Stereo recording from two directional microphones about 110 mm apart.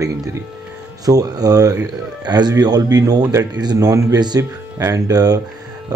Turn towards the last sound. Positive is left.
turn(degrees=-35)  # may be behind; listen again after turning